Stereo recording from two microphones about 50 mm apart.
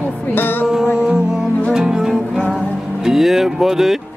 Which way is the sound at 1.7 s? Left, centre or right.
Centre.